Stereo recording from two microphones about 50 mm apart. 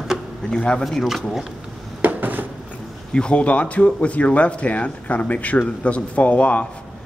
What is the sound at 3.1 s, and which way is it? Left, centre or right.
A man's voice, left.